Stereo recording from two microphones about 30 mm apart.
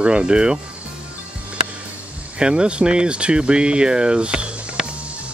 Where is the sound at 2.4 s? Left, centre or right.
Right.